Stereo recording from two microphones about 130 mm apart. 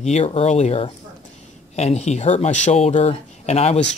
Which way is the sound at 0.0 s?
55° left (ahead or behind).